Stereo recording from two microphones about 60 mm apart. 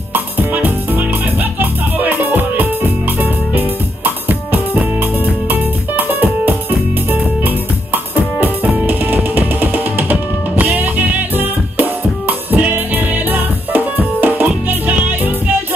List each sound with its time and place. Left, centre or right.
0.1 s music: right